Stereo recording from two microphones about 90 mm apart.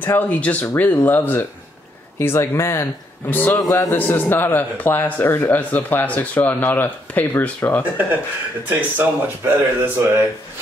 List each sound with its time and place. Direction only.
0.0 s a man's voice: 20° left (ahead or behind)
8.6 s speech: 25° right (ahead or behind)